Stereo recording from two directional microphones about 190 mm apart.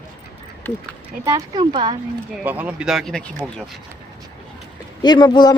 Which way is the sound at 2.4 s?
10° right (ahead or behind).